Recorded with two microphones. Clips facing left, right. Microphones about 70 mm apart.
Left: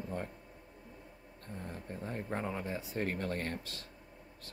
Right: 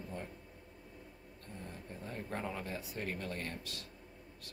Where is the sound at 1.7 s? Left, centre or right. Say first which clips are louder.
Left 5 dB; left.